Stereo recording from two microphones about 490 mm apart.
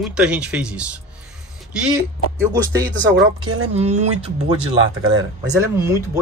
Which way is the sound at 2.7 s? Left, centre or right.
Right.